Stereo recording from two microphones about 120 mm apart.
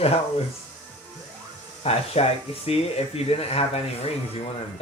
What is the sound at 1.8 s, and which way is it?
Speech, 60° left (ahead or behind).